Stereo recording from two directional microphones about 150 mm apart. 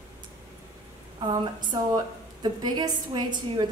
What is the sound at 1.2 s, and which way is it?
A woman's voice, 30° right (ahead or behind).